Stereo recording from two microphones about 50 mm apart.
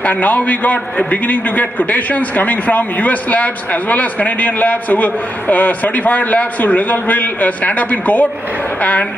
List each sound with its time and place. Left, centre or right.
0.0 s a man's voice: left